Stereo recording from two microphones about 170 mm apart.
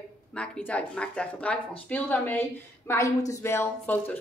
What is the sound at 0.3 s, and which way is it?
Speech, 5° left (ahead or behind).